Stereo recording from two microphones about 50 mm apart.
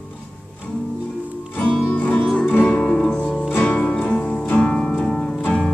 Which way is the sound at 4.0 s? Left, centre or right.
Left.